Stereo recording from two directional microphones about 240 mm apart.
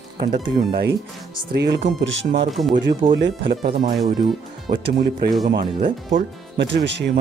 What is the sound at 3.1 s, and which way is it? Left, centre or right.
Speech, right.